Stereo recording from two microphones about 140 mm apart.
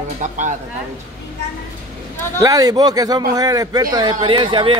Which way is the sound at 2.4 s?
25° right (ahead or behind).